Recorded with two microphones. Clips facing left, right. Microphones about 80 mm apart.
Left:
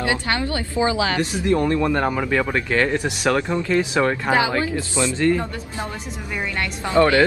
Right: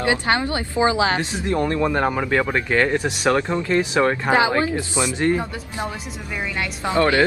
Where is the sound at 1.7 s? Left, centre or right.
Centre.